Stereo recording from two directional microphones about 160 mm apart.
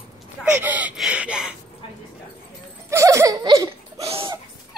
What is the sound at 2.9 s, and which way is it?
Laughter, 20° right (ahead or behind).